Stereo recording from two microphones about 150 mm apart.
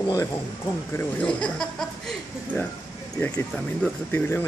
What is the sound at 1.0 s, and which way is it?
A man's voice, 5° left (ahead or behind).